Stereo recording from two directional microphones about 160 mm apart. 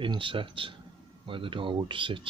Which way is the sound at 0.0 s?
30° right (ahead or behind).